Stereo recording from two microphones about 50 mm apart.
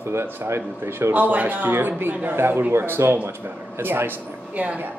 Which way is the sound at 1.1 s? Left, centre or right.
Right.